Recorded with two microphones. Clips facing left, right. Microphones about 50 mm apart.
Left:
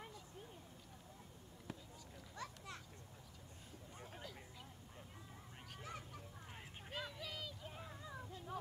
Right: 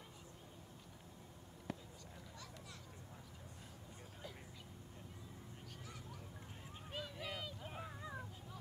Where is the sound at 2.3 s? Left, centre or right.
Left.